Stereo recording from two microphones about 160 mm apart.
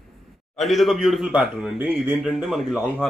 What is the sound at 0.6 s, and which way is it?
Speech, centre (ahead or behind).